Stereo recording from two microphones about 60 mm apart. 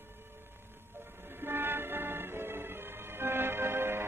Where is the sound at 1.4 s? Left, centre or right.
Right.